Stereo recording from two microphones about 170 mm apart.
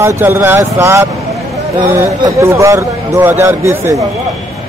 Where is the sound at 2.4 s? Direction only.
15° right (ahead or behind).